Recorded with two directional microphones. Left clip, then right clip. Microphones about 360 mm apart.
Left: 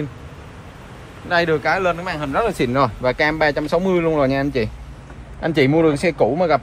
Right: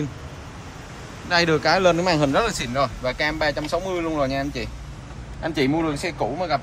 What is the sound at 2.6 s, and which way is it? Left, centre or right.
Speech, centre.